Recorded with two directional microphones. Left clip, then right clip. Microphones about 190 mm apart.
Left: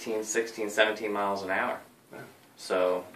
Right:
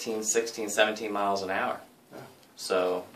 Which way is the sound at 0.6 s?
55° right (ahead or behind).